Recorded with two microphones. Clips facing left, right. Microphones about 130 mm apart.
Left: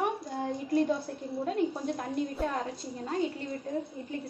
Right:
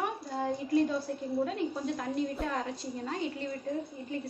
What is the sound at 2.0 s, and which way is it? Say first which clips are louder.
A woman's voice: left 1 dB; 40° left (ahead or behind).